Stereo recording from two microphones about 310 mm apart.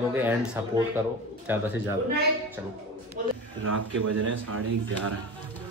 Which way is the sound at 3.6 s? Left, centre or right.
Right.